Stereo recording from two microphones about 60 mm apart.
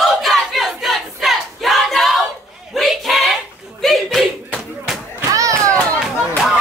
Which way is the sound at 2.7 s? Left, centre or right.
Centre.